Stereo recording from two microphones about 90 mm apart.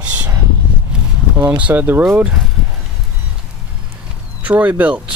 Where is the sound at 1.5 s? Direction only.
15° right (ahead or behind).